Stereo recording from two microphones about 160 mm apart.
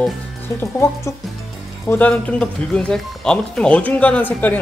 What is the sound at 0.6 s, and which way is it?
Speech, 15° left (ahead or behind).